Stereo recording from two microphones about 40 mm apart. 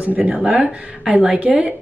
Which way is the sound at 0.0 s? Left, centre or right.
Right.